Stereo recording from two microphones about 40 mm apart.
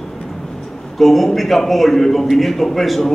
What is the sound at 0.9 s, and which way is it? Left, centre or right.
A man's voice, centre.